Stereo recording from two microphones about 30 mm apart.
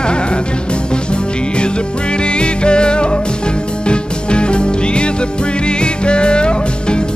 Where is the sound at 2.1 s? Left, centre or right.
Left.